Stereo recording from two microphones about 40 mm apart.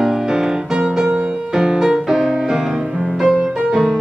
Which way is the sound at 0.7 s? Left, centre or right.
Right.